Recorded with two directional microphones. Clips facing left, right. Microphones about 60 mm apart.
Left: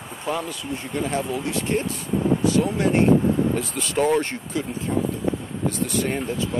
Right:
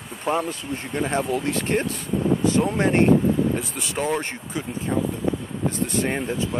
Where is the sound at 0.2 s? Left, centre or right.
Right.